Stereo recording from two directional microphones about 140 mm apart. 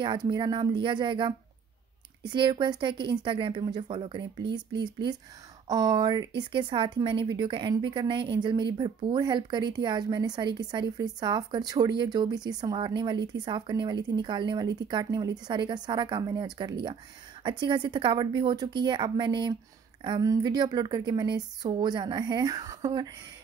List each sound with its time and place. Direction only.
0.0 s speech: 35° right (ahead or behind)
5.7 s speech: 30° right (ahead or behind)